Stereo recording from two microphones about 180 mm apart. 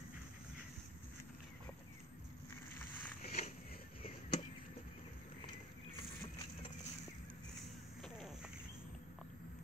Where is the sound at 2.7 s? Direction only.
10° left (ahead or behind).